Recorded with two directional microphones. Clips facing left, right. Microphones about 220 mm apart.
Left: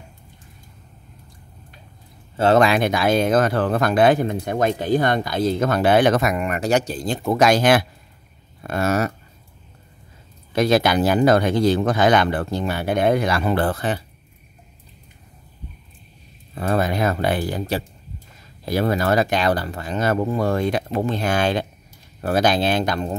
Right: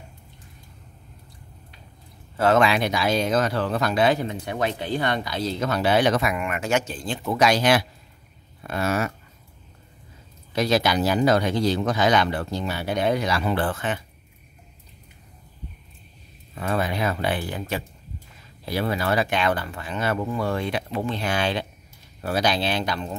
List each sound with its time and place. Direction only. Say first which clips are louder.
2.3 s speech: left 3 dB; 30° left (ahead or behind)
2.6 s speech: left 4 dB; 50° left (ahead or behind)
10.5 s speech: left 4 dB; 55° left (ahead or behind); by 14.0 s 35° left (ahead or behind)
16.5 s speech: left 4 dB; 40° left (ahead or behind)